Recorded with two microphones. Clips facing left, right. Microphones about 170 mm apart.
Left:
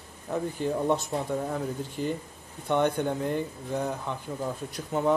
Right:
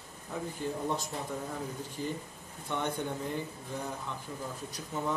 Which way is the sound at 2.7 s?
65° left (ahead or behind).